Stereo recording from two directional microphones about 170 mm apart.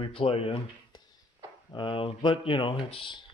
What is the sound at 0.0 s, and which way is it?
Speech, 30° left (ahead or behind).